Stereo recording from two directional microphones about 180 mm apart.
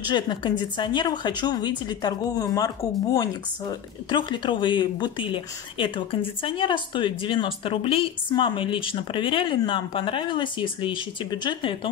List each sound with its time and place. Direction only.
0.1 s a woman's voice: 25° left (ahead or behind)